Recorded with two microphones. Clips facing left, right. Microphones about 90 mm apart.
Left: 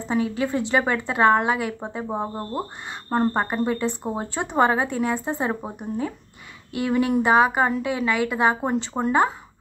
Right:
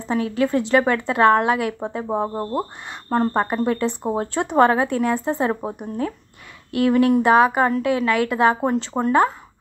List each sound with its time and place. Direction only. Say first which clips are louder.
0.1 s speech: right 3 dB; 5° left (ahead or behind)
3.1 s speech: right 2 dB; 10° left (ahead or behind)
9.0 s speech: right 3 dB; 15° right (ahead or behind)